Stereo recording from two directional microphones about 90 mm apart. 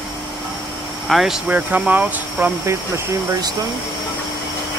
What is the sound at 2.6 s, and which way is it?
Speech, 30° right (ahead or behind).